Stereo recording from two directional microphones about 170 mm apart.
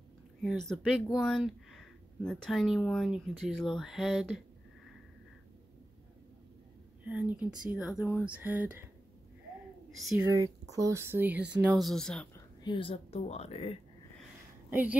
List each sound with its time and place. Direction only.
0.4 s speech: centre (ahead or behind)
7.1 s speech: 10° right (ahead or behind)
10.4 s speech: 20° right (ahead or behind); by 12.3 s 5° left (ahead or behind)
12.6 s speech: 30° left (ahead or behind)
14.7 s speech: 10° right (ahead or behind)